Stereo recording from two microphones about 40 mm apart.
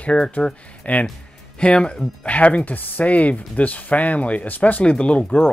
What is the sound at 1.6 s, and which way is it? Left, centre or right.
Speech, left.